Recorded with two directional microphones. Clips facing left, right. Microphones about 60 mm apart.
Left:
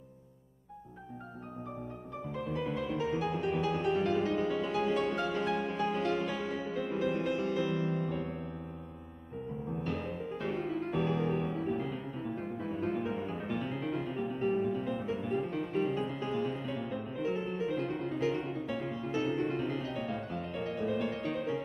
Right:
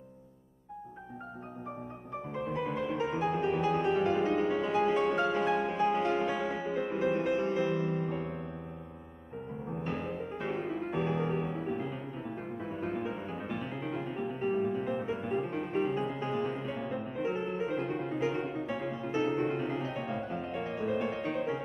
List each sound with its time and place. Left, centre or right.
2.3 s music: right
9.8 s music: centre